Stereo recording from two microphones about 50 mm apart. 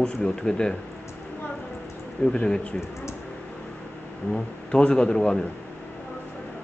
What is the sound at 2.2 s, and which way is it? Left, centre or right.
Speech, centre.